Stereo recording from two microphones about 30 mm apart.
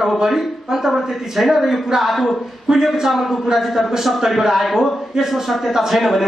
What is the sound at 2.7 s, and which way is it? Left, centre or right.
Speech, right.